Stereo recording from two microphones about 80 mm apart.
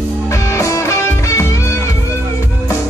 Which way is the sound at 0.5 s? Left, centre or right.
Left.